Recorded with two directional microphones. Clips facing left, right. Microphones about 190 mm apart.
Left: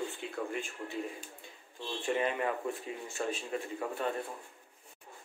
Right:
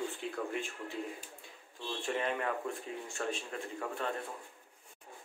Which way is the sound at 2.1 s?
5° left (ahead or behind).